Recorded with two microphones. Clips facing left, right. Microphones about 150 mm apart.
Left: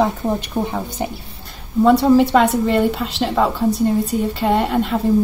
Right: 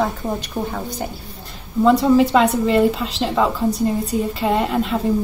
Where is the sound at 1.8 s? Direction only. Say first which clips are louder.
Left 1 dB; 5° left (ahead or behind).